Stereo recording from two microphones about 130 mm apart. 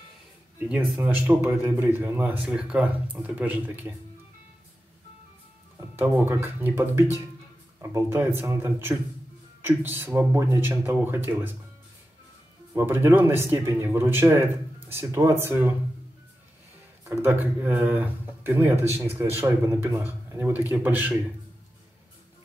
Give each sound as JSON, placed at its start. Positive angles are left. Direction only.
{"t": 0.6, "sound": "speech", "side_deg": -15}
{"t": 5.8, "sound": "speech", "side_deg": -15}
{"t": 12.7, "sound": "speech", "side_deg": -20}
{"t": 17.0, "sound": "speech", "side_deg": -15}